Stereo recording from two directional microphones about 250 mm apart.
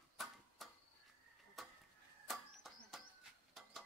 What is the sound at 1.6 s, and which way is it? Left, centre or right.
Tick-tock, centre.